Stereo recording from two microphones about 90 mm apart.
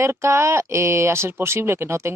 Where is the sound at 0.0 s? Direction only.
30° right (ahead or behind).